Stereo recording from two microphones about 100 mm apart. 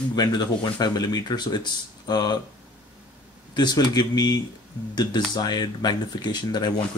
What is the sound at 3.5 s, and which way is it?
Speech, 45° left (ahead or behind).